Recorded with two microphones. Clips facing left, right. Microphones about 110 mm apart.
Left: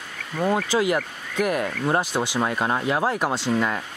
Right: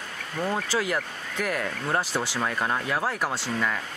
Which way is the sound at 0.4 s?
20° left (ahead or behind).